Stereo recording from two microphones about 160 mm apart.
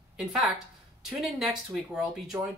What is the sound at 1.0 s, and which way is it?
Speech, centre (ahead or behind).